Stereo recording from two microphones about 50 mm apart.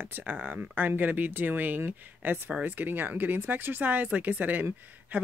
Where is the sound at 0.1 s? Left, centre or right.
Right.